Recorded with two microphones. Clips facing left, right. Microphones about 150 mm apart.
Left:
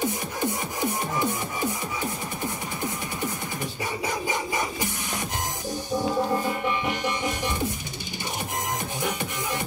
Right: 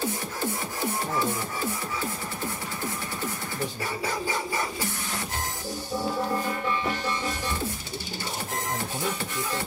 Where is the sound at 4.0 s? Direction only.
15° left (ahead or behind).